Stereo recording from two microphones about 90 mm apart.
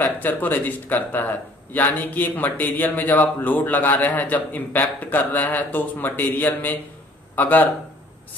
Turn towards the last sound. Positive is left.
turn(degrees=20)  # may be behind; listen again after turning